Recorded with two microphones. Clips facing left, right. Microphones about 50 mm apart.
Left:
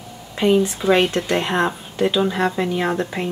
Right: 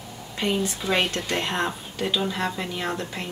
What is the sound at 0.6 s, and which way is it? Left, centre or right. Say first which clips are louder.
Speech: left 8 dB; centre.